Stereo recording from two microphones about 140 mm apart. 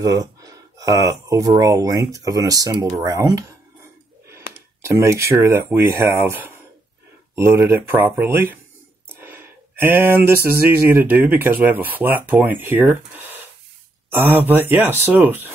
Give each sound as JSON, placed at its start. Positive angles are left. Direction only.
{"t": 0.0, "sound": "speech", "side_deg": -25}
{"t": 4.6, "sound": "speech", "side_deg": -20}
{"t": 9.1, "sound": "a sound", "side_deg": -15}
{"t": 14.1, "sound": "speech", "side_deg": -15}